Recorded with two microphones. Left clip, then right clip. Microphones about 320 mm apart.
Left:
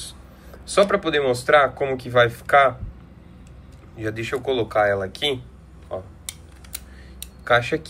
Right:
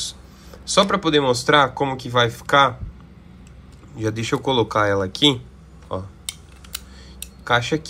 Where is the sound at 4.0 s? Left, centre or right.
Centre.